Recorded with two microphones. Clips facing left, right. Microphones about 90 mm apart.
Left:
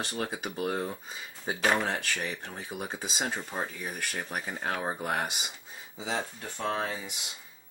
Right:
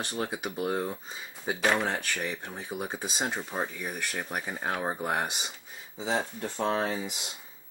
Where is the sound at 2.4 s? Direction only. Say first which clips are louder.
Right 2 dB; 15° right (ahead or behind).